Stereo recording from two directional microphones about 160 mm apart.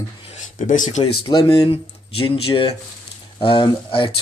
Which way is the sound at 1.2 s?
25° left (ahead or behind).